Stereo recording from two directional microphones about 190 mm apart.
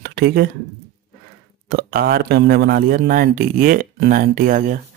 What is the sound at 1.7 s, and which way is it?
Speech, 50° right (ahead or behind).